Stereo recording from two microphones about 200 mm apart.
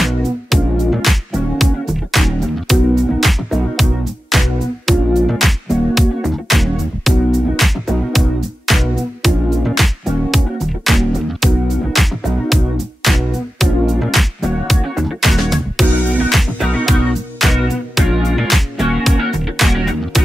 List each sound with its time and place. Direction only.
0.0 s music: centre (ahead or behind)